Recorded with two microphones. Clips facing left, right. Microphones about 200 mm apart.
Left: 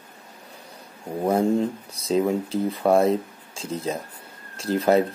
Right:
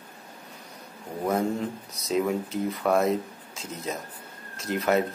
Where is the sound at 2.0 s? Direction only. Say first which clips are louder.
Left 4 dB; 30° left (ahead or behind).